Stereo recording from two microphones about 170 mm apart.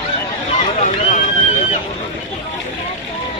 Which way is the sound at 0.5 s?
40° left (ahead or behind).